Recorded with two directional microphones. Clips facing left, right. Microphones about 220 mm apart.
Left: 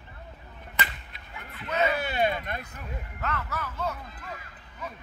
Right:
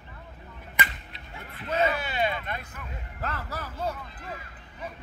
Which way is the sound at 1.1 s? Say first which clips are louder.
Right 1 dB; 30° right (ahead or behind).